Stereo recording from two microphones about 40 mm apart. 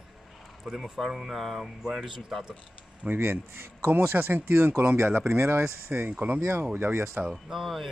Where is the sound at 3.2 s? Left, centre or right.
Right.